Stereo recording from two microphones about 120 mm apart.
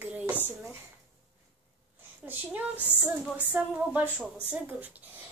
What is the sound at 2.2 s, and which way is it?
Speech, 15° right (ahead or behind).